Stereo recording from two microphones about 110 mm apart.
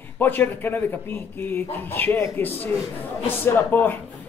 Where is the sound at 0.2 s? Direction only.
20° left (ahead or behind).